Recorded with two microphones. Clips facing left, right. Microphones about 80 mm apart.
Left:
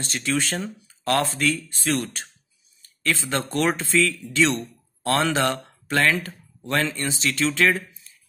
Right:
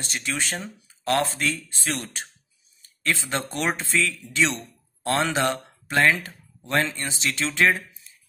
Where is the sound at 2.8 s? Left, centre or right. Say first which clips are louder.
Left 1 dB; right.